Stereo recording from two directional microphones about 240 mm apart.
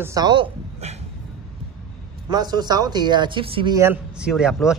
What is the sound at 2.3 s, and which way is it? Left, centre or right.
Speech, centre.